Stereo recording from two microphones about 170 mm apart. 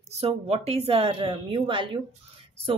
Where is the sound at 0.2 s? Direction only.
40° right (ahead or behind).